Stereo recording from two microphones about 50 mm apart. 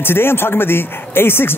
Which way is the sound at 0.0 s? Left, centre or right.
Left.